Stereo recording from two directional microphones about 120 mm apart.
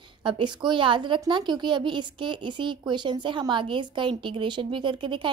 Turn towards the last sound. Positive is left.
turn(degrees=-45)  # may be behind; listen again after turning